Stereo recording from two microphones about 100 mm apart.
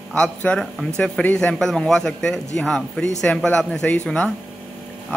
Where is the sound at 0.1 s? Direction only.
10° left (ahead or behind).